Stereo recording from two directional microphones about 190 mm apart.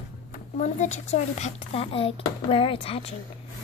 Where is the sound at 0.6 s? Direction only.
40° left (ahead or behind).